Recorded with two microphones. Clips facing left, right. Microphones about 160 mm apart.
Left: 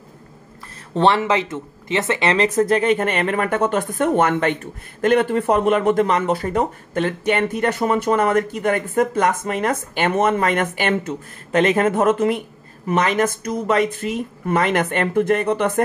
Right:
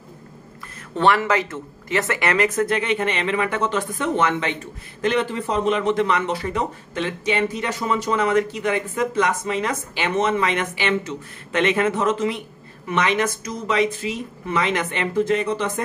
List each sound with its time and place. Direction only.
0.9 s speech: 30° left (ahead or behind); by 15.8 s 55° left (ahead or behind)